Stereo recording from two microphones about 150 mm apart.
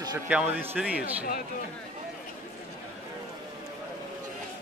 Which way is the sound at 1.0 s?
90° left.